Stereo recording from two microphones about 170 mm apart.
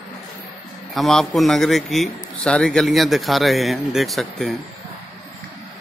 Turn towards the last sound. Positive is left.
turn(degrees=0)  # may be behind; listen again after turning